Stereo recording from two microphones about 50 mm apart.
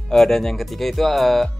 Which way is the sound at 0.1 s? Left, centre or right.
Centre.